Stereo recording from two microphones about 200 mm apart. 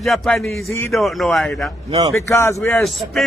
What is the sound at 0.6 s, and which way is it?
Speech, 10° left (ahead or behind).